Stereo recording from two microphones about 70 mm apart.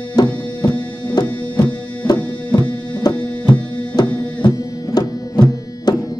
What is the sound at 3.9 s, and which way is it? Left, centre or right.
Music, left.